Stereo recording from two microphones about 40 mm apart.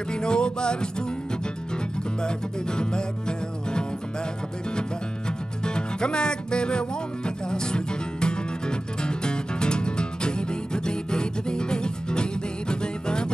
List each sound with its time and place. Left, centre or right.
0.1 s music: left
2.2 s music: left
5.6 s music: left